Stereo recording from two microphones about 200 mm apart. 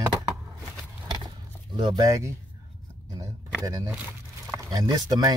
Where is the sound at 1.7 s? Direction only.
20° right (ahead or behind).